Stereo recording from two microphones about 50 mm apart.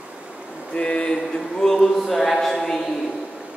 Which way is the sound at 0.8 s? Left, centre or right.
Centre.